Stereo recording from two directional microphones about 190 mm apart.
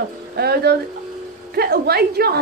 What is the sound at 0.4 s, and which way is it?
A woman's voice, 55° right (ahead or behind).